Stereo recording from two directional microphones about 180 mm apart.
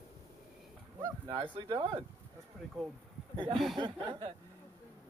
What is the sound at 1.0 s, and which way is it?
Speech, 25° right (ahead or behind).